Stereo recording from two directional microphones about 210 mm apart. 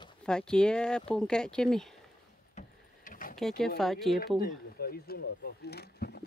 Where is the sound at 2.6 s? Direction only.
40° left (ahead or behind).